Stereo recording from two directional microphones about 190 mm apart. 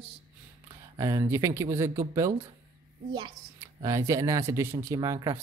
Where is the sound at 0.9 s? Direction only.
20° right (ahead or behind).